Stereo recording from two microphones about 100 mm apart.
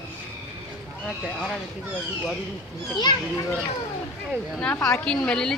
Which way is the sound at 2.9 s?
45° left (ahead or behind).